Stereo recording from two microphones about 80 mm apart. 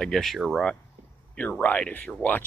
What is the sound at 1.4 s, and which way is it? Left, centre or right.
Speech, centre.